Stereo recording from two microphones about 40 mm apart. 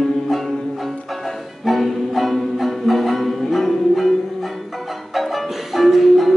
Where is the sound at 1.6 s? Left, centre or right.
Centre.